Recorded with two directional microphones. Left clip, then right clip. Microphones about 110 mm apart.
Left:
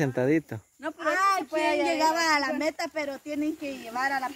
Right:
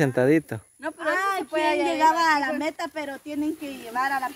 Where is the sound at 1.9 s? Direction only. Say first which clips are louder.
Right 7 dB; 45° left (ahead or behind).